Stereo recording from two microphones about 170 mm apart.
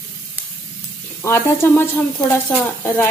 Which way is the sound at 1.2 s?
15° left (ahead or behind).